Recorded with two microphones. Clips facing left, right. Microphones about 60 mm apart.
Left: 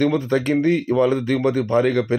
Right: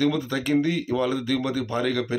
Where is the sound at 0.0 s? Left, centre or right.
Left.